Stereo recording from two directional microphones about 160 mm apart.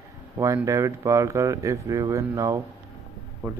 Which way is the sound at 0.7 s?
20° right (ahead or behind).